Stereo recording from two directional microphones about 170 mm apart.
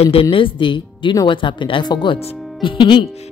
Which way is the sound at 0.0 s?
35° left (ahead or behind).